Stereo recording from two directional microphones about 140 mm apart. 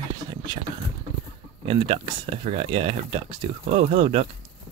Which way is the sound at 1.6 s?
35° right (ahead or behind).